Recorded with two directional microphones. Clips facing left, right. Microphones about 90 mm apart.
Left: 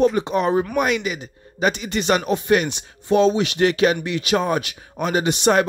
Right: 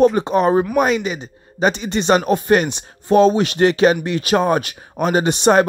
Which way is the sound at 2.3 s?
40° right (ahead or behind).